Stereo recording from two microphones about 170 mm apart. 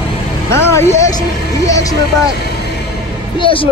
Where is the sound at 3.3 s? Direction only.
30° left (ahead or behind).